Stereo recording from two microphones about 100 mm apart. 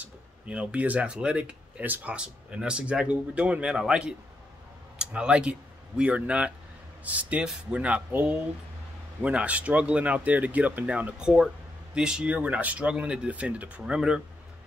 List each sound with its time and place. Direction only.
0.0 s speech: 10° right (ahead or behind)